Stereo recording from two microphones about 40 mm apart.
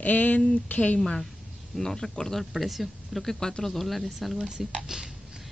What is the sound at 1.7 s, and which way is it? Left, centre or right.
Speech, centre.